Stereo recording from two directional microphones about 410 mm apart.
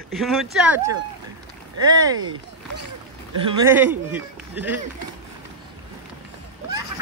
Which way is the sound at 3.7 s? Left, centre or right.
Centre.